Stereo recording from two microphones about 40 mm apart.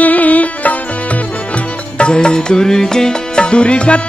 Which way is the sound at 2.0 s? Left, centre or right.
Left.